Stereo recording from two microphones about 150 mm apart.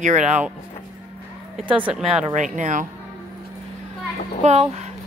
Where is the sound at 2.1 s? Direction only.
55° right (ahead or behind).